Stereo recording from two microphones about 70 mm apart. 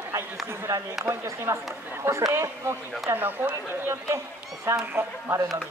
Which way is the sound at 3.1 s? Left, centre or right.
Right.